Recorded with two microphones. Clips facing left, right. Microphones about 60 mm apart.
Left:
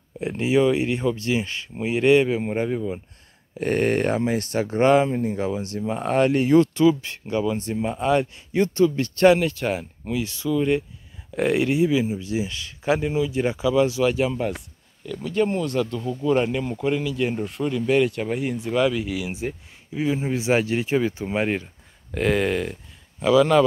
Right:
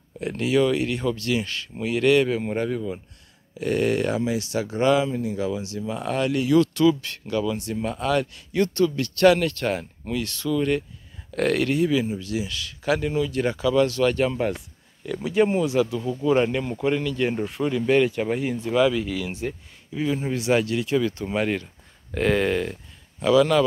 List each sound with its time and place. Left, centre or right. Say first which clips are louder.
0.2 s speech: left 1 dB; left
3.5 s speech: left 1 dB; left; by 14.7 s centre
15.0 s speech: right 2 dB; centre
22.1 s speech: even; centre